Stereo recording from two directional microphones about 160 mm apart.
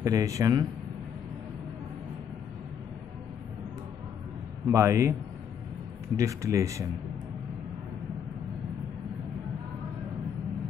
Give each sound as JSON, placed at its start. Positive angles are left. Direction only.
{"t": 0.0, "sound": "speech", "side_deg": -20}
{"t": 4.6, "sound": "a man's voice", "side_deg": -15}
{"t": 6.1, "sound": "speech", "side_deg": -20}